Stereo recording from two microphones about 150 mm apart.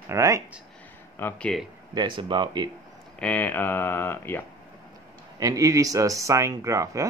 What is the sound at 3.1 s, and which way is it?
Speech, 10° left (ahead or behind).